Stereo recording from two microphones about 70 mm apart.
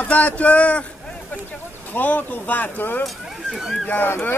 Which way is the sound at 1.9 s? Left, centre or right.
Left.